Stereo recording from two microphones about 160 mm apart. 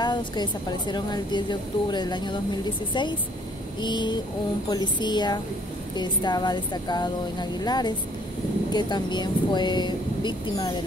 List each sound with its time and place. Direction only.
0.0 s a woman's voice: 25° left (ahead or behind)